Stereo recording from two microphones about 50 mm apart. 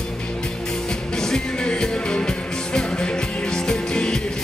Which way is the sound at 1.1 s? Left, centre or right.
Centre.